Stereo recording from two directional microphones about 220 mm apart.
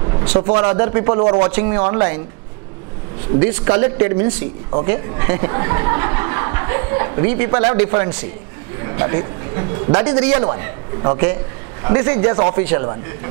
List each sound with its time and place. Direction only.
0.2 s a sound: 30° right (ahead or behind)
0.5 s a man's voice: 20° right (ahead or behind)
3.3 s a man's voice: 20° right (ahead or behind)